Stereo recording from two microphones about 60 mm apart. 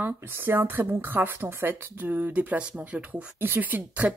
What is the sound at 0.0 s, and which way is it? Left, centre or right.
Speech, right.